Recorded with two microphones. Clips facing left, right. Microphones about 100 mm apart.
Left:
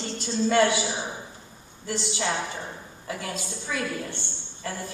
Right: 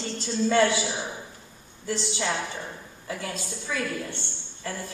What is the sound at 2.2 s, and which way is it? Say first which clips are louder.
A woman's voice: left 1 dB; 20° left (ahead or behind).